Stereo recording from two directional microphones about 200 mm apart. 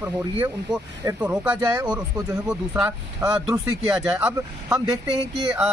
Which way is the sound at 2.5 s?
5° right (ahead or behind).